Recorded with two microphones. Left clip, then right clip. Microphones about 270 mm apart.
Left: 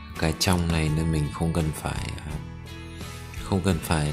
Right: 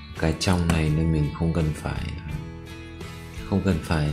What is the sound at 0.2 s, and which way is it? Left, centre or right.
Speech, centre.